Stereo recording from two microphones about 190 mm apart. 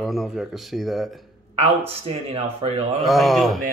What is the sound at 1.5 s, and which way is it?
Speech, 30° right (ahead or behind).